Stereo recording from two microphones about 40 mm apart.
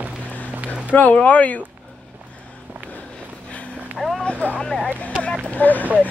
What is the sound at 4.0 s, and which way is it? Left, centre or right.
Boat, centre.